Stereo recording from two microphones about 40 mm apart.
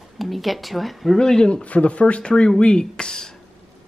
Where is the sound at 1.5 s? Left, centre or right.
Left; by 3.3 s centre.